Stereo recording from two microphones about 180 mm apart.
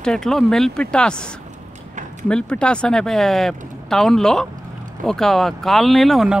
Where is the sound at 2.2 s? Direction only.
5° left (ahead or behind).